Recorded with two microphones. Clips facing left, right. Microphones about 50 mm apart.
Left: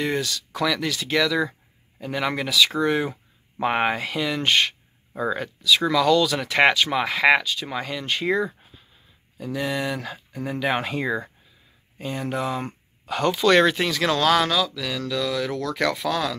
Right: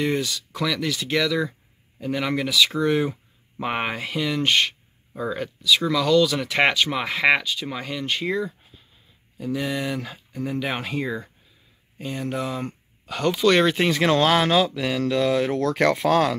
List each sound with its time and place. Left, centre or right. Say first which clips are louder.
0.0 s speech: right 1 dB; centre
13.7 s speech: right 3 dB; right